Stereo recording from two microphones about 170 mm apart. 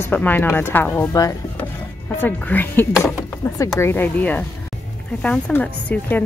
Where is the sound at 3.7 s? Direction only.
15° left (ahead or behind).